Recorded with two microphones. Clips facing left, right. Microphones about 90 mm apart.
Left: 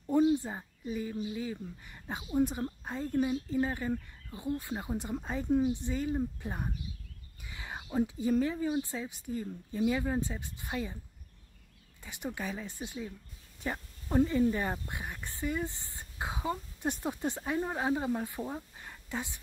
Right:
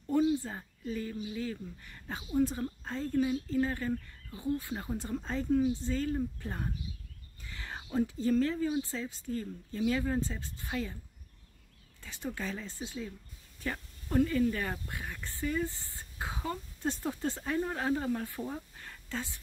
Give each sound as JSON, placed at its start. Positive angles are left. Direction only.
{"t": 0.0, "sound": "a sound", "side_deg": 20}
{"t": 1.3, "sound": "a woman's voice", "side_deg": 15}
{"t": 12.0, "sound": "a woman's voice", "side_deg": 15}